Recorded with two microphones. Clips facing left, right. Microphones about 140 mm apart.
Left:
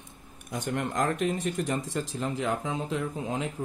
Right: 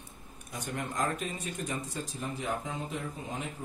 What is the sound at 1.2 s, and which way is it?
Speech, 85° left.